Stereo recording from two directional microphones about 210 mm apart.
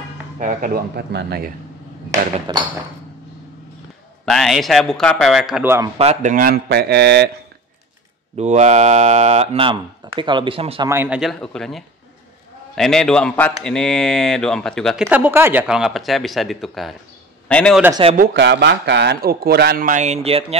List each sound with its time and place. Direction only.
0.4 s a man's voice: 40° right (ahead or behind)
2.5 s a sound: 20° right (ahead or behind)
4.3 s speech: centre (ahead or behind)
5.9 s a man's voice: 35° right (ahead or behind); by 7.2 s 55° right (ahead or behind)
8.4 s speech: 35° right (ahead or behind)
10.9 s speech: 10° right (ahead or behind)
18.1 s a man's voice: 50° right (ahead or behind); by 20.5 s 30° right (ahead or behind)